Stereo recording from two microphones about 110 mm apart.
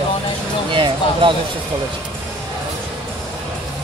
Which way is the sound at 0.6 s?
50° right (ahead or behind).